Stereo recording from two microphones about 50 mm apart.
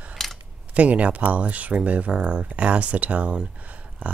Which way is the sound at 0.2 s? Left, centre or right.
Centre.